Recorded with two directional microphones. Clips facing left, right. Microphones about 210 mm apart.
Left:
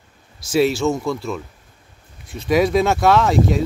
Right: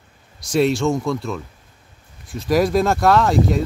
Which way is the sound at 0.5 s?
Centre (ahead or behind).